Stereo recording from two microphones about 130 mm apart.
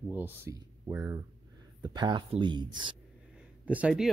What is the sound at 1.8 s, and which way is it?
Speech, 35° right (ahead or behind).